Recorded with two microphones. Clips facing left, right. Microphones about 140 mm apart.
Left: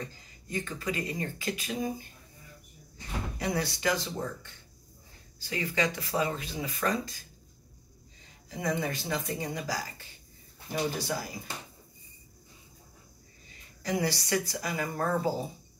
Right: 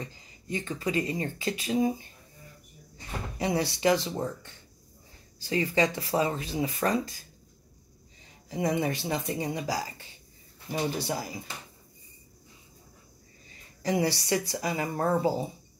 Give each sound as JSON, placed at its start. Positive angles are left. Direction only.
{"t": 0.0, "sound": "speech", "side_deg": -25}
{"t": 3.3, "sound": "speech", "side_deg": -25}
{"t": 8.5, "sound": "speech", "side_deg": -30}
{"t": 13.8, "sound": "speech", "side_deg": -30}